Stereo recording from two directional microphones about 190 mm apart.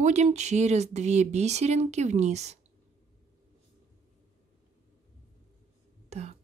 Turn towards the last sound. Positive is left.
turn(degrees=-35)  # may be behind; listen again after turning